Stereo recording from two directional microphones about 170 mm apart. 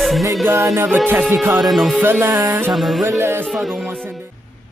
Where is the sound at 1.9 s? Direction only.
10° right (ahead or behind).